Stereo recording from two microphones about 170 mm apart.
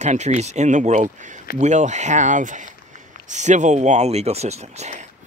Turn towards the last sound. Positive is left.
turn(degrees=-40)  # may be behind; listen again after turning